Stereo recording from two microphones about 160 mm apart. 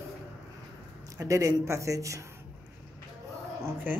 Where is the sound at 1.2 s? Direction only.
20° right (ahead or behind).